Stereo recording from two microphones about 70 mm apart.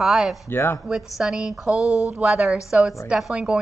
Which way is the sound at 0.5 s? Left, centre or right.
Left.